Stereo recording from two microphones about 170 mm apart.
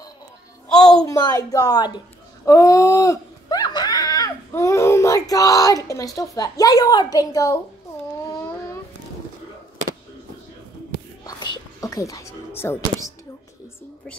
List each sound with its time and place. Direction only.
0.7 s a woman's voice: 20° left (ahead or behind)
11.5 s speech: 20° left (ahead or behind)